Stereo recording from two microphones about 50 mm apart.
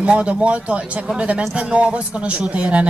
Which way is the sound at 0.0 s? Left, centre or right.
Right.